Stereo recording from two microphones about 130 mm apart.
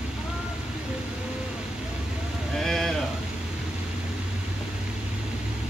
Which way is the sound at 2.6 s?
5° left (ahead or behind).